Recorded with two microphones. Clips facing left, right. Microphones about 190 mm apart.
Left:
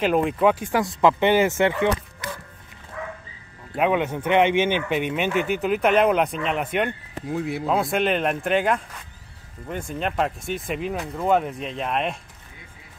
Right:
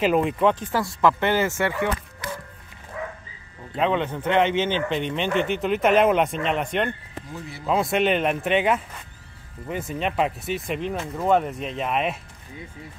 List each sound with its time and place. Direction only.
0.0 s speech: centre (ahead or behind); by 1.9 s 20° left (ahead or behind)
3.7 s speech: 10° left (ahead or behind)
7.3 s speech: 60° left (ahead or behind)
7.6 s speech: centre (ahead or behind)